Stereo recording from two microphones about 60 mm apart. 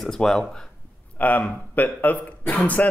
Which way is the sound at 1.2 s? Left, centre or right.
Left.